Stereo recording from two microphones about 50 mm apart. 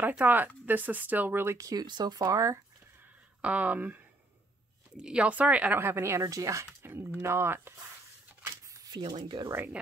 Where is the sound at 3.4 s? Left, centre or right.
Right.